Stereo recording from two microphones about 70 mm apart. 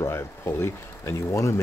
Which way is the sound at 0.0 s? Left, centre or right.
Left.